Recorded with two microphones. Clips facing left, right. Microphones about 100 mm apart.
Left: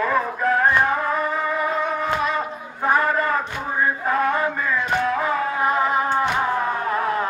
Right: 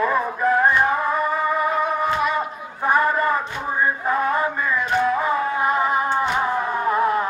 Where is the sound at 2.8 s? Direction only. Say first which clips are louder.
Right 1 dB; 5° right (ahead or behind).